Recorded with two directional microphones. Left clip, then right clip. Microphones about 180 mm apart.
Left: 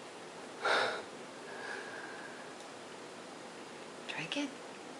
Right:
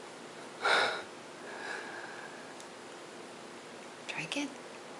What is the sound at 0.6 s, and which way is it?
Gasp, 5° right (ahead or behind).